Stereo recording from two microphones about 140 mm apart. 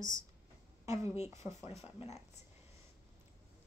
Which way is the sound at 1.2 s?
20° right (ahead or behind).